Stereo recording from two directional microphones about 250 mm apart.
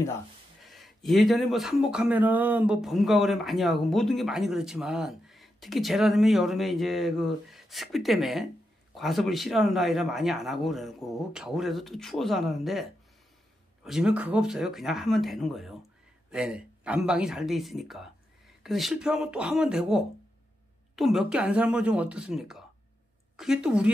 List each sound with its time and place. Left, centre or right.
0.7 s speech: centre
13.8 s speech: centre